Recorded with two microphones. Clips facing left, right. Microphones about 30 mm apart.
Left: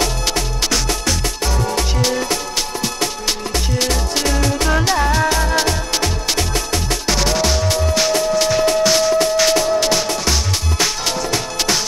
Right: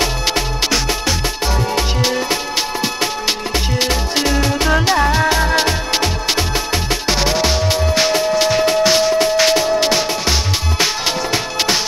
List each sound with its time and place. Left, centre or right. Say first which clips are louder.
0.0 s music: right 2 dB; centre
3.5 s music: right 1 dB; centre
11.3 s music: right 2 dB; centre